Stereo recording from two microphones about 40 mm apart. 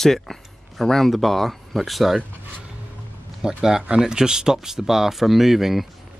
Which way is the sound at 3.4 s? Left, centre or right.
Right.